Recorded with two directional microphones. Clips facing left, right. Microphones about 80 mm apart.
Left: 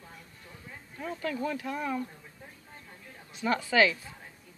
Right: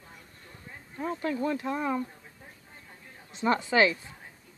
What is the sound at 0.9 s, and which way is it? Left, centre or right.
Speech, right.